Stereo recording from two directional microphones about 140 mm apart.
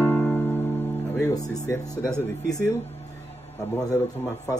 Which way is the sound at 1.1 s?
25° left (ahead or behind).